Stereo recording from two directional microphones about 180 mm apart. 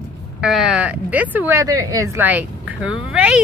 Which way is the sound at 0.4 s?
5° right (ahead or behind).